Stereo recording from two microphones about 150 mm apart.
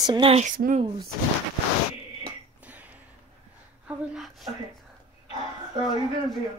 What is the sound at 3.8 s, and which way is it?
Speech, centre (ahead or behind).